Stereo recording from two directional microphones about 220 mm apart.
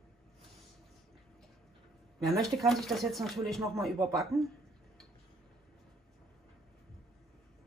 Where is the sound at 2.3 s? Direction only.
Centre (ahead or behind).